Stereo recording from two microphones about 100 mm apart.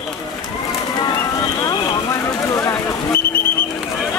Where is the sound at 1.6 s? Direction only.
45° left (ahead or behind).